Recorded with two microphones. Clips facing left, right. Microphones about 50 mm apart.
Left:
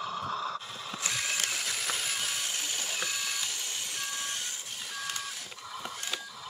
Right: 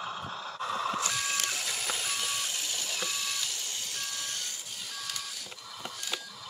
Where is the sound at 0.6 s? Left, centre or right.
Right.